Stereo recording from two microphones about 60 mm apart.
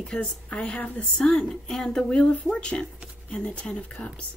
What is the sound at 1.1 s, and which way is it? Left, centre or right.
Speech, centre.